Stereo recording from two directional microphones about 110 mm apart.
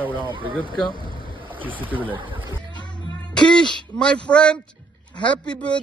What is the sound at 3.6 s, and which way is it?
Speech, 10° left (ahead or behind).